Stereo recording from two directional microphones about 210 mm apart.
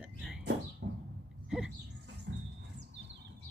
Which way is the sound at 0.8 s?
50° right (ahead or behind).